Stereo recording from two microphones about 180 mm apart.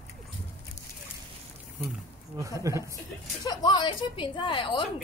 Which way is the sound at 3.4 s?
25° left (ahead or behind).